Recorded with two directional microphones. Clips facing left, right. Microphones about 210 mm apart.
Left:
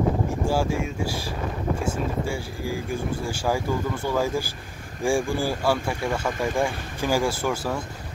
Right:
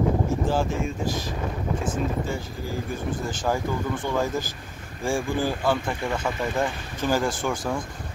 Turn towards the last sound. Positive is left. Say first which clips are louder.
# left 1 dB
turn(degrees=5)  # may be behind; listen again after turning